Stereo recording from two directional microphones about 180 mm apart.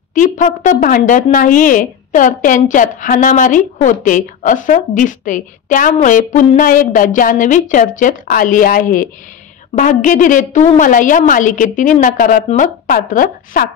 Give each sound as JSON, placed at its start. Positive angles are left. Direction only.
{"t": 0.1, "sound": "a woman's voice", "side_deg": 45}